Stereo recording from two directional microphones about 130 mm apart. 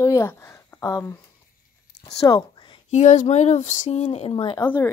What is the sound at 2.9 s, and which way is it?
Speech, 65° left (ahead or behind).